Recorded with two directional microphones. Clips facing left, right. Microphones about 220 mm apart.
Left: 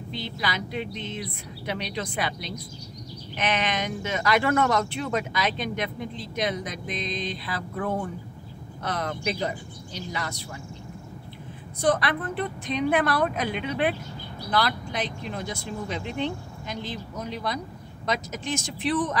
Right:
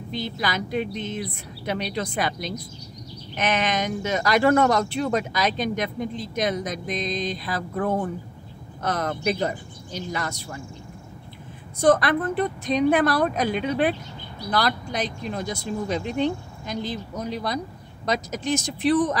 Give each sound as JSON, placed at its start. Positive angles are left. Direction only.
{"t": 0.1, "sound": "speech", "side_deg": -45}
{"t": 11.8, "sound": "speech", "side_deg": -45}